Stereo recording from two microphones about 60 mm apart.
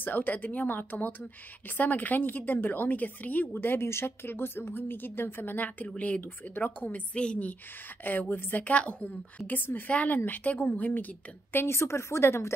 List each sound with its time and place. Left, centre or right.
0.0 s a woman's voice: left
5.9 s a woman's voice: left
9.5 s a woman's voice: left
11.5 s speech: left